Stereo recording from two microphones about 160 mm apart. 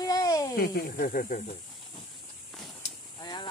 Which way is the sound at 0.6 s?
70° left (ahead or behind).